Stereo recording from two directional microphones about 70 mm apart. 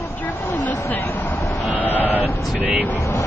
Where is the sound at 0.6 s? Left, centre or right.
Left.